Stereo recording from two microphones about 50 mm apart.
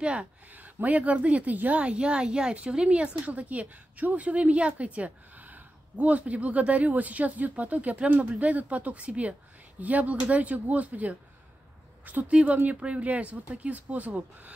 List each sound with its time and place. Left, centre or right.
0.0 s a woman's voice: right
0.6 s a woman's voice: right
12.3 s a woman's voice: right